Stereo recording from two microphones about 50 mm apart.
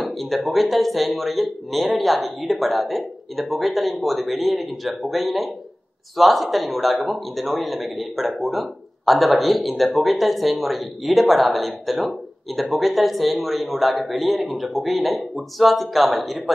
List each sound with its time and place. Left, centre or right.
0.0 s speech: centre